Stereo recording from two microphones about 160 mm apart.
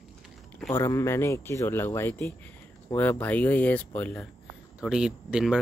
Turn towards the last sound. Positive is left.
turn(degrees=-5)  # may be behind; listen again after turning